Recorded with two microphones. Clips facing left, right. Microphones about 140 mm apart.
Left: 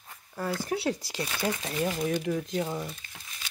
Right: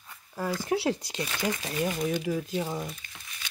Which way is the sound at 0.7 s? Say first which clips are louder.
Right 2 dB; 25° right (ahead or behind).